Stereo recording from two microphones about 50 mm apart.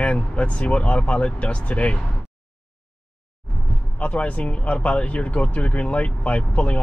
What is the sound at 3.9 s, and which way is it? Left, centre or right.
Speech, left.